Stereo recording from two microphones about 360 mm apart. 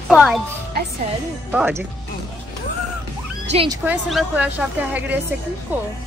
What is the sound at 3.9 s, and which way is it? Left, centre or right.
A woman's voice, centre.